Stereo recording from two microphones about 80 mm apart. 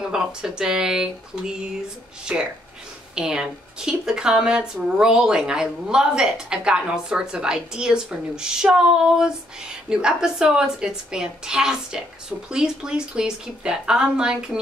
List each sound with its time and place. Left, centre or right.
0.0 s speech: centre